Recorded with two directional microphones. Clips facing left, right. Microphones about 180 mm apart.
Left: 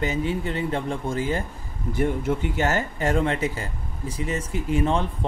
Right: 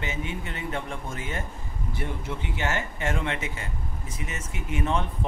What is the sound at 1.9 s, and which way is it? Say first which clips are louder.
Speech: left 11 dB; 45° left (ahead or behind).